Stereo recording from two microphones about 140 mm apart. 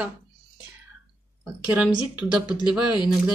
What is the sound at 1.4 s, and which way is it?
Speech, 15° right (ahead or behind).